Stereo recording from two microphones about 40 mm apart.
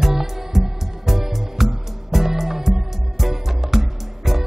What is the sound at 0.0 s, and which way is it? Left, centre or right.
Music, centre.